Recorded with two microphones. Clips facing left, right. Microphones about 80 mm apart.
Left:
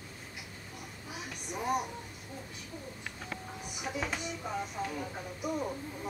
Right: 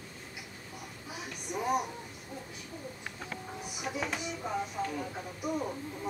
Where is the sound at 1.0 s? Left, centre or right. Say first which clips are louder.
Right 1 dB; centre.